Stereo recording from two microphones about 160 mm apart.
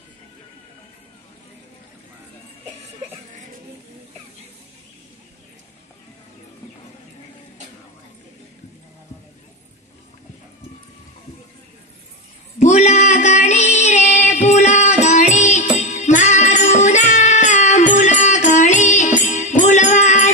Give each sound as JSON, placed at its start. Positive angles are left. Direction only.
{"t": 12.5, "sound": "female singing", "side_deg": 50}